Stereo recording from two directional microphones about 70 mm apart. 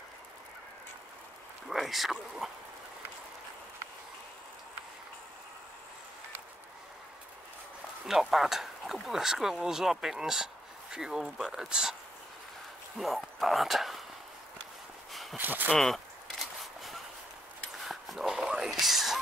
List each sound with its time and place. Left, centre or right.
1.7 s speech: centre
8.1 s speech: centre
12.9 s speech: centre
15.3 s speech: right
15.7 s a sound: centre